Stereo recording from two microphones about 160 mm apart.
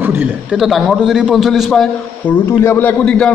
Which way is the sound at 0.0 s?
10° right (ahead or behind).